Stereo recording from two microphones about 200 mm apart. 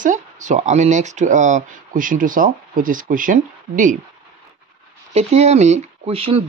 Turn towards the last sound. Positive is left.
turn(degrees=-30)  # may be behind; listen again after turning